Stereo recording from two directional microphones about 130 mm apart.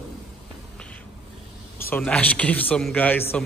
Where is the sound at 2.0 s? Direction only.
10° left (ahead or behind).